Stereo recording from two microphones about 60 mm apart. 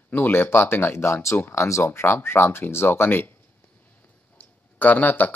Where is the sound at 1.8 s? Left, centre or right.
Left.